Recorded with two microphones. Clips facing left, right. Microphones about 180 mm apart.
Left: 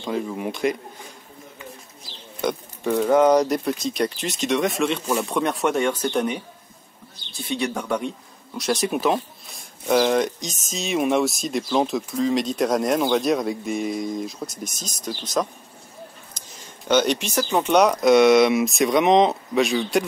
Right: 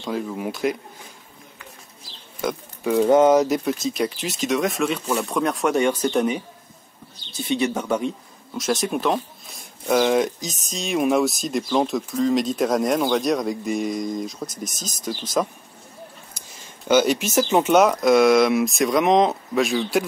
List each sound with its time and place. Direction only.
0.0 s speech: centre (ahead or behind)
2.4 s speech: 5° right (ahead or behind)
7.4 s speech: centre (ahead or behind)
16.3 s a sound: 5° right (ahead or behind)
17.3 s speech: 25° right (ahead or behind)
17.6 s speech: centre (ahead or behind)